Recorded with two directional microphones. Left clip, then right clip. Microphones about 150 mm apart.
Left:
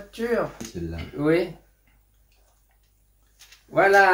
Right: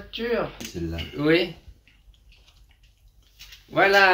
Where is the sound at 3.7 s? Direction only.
5° right (ahead or behind).